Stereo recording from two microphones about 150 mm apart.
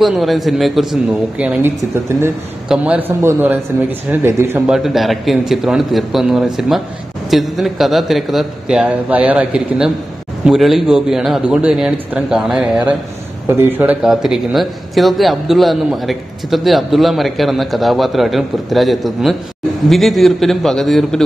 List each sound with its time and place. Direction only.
0.0 s a man's voice: centre (ahead or behind)
2.7 s a man's voice: 10° right (ahead or behind)
14.0 s a man's voice: centre (ahead or behind)